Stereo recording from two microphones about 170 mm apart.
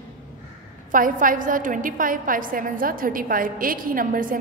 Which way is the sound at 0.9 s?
55° right (ahead or behind).